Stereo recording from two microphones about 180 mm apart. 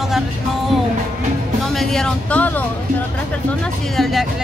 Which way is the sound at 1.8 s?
Centre (ahead or behind).